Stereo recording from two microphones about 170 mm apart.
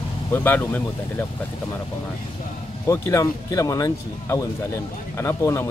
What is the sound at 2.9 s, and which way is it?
Speech, 15° left (ahead or behind).